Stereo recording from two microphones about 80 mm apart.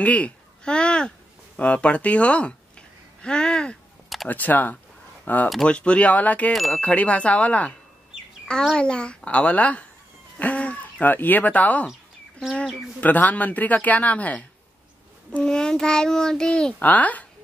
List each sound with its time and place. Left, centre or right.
0.0 s a child's voice: centre
6.5 s chime: centre
6.8 s a child's voice: centre
8.7 s a child's voice: centre
13.0 s a child's voice: left